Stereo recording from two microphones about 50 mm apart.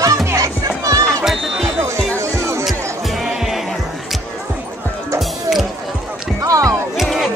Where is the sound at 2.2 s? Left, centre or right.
Right.